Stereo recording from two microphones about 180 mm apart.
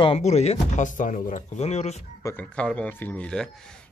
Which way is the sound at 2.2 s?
10° left (ahead or behind).